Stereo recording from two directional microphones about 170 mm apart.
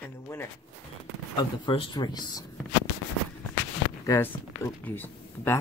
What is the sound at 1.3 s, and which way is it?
Speech, 30° left (ahead or behind).